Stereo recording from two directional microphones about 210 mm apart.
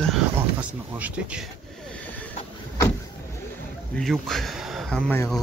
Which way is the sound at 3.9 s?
Centre (ahead or behind).